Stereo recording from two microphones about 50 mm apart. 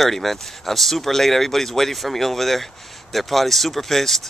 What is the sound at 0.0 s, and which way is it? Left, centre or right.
Speech, centre.